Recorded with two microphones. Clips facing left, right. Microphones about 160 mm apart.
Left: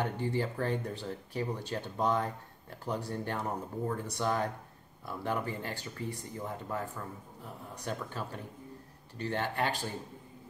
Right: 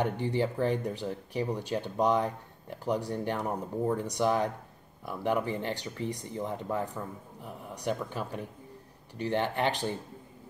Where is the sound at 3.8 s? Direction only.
25° right (ahead or behind).